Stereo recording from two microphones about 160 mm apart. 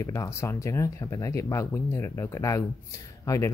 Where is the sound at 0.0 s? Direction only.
20° left (ahead or behind).